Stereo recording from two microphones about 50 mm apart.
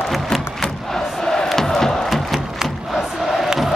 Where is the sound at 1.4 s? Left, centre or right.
Centre.